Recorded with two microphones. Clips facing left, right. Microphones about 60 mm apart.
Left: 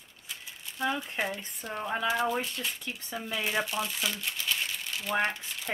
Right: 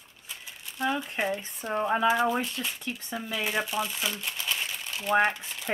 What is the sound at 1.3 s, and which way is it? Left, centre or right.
Speech, right.